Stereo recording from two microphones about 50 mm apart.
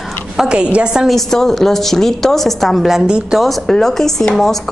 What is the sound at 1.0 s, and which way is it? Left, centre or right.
A woman's voice, centre.